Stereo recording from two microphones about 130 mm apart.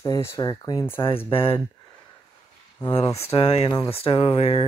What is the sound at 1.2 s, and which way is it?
Speech, 45° left (ahead or behind).